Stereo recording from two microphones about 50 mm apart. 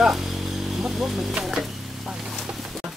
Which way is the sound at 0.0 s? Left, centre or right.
Centre.